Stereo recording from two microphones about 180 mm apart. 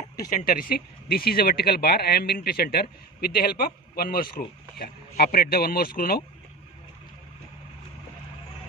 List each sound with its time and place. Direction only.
0.2 s speech: 50° left (ahead or behind)